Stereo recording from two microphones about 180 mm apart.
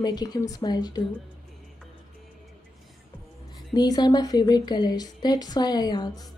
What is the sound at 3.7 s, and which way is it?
A woman's voice, 20° left (ahead or behind).